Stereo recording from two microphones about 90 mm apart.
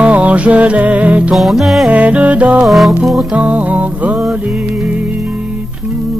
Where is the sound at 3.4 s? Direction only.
15° right (ahead or behind).